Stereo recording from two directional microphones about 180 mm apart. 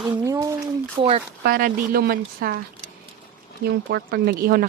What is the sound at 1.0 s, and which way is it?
Speech, 30° right (ahead or behind).